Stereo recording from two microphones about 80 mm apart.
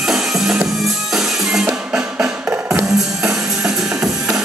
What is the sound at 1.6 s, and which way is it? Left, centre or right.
Music, centre.